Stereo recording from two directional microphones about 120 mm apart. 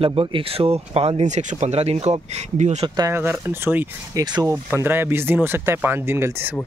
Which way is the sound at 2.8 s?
35° right (ahead or behind).